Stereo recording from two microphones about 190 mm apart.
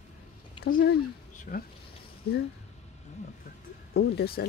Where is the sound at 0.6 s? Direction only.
55° left (ahead or behind).